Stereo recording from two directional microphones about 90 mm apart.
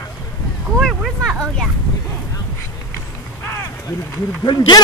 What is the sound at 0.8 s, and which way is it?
Speech, centre (ahead or behind).